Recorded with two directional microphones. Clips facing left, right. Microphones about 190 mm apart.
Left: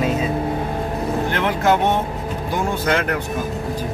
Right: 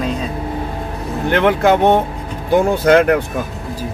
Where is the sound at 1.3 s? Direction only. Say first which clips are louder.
Right 7 dB; 60° right (ahead or behind).